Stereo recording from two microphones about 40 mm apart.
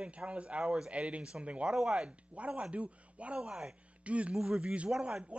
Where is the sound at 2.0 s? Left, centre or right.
Right.